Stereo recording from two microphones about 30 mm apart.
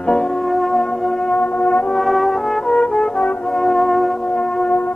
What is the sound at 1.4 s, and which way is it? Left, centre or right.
Brass instrument, left.